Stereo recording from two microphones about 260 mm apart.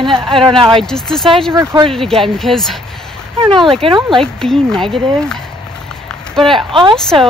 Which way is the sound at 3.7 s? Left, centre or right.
Centre.